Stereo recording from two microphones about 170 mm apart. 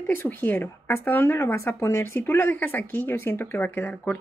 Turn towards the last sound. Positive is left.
turn(degrees=10)  # may be behind; listen again after turning